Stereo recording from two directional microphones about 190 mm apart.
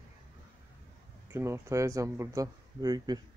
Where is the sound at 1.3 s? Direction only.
15° right (ahead or behind).